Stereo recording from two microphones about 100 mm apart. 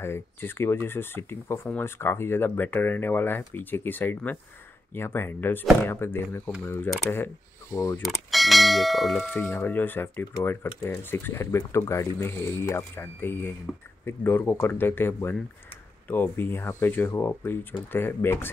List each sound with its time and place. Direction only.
0.0 s speech: 25° left (ahead or behind)
8.0 s church bell: centre (ahead or behind)
9.4 s speech: 25° left (ahead or behind)